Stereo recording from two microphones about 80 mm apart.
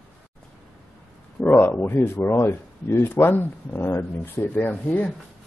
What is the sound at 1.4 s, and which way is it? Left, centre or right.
Speech, left.